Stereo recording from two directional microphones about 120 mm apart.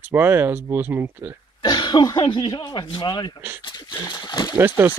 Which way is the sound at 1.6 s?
40° left (ahead or behind).